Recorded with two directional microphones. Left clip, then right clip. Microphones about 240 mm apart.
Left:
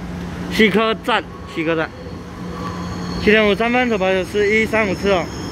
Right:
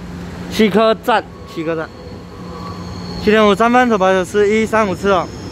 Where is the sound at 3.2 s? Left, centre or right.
Centre.